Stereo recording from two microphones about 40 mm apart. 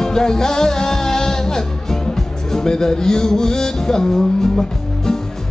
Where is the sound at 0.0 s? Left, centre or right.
Centre.